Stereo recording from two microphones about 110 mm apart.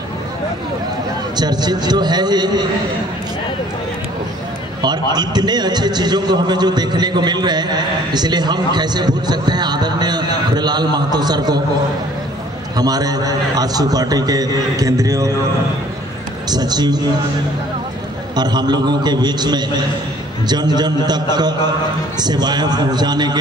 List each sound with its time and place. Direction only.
1.3 s a man's voice: 40° right (ahead or behind)
4.8 s a man's voice: 40° right (ahead or behind)
12.7 s a man's voice: 35° right (ahead or behind)
16.4 s a man's voice: 40° right (ahead or behind)
18.3 s a man's voice: 40° right (ahead or behind)